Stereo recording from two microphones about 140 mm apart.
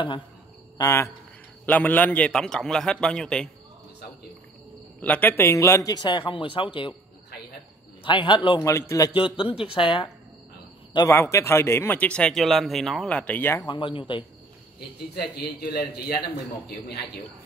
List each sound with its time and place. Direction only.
0.7 s a man's voice: 20° left (ahead or behind)
5.0 s a man's voice: 10° left (ahead or behind); by 7.0 s 35° left (ahead or behind)
8.0 s a man's voice: 35° left (ahead or behind)
8.6 s a man's voice: 20° left (ahead or behind)
9.1 s a man's voice: 40° left (ahead or behind)
11.1 s speech: 20° left (ahead or behind)
13.6 s a man's voice: 35° left (ahead or behind)
15.6 s a man's voice: 90° left